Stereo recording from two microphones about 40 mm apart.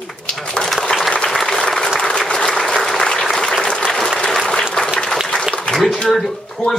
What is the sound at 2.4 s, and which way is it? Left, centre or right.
Applause, centre.